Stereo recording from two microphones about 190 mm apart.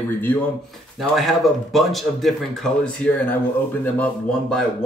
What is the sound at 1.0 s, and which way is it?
Speech, centre (ahead or behind).